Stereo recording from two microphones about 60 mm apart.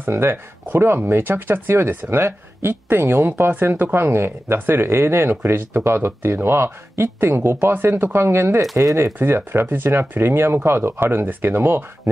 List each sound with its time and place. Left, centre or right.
0.1 s speech: right